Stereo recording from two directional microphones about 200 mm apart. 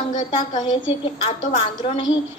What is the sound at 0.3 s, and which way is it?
A woman's voice, 25° left (ahead or behind).